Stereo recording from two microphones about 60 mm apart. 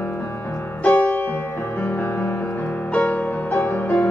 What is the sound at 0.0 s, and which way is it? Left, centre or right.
Music, left.